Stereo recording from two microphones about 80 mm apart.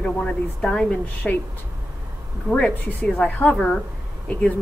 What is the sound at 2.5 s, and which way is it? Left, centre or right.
Speech, left.